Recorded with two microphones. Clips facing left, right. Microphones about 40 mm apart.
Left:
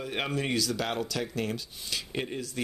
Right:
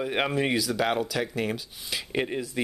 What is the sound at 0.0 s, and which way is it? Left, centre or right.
Speech, centre.